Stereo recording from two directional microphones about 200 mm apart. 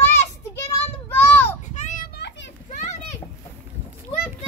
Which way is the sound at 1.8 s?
35° left (ahead or behind).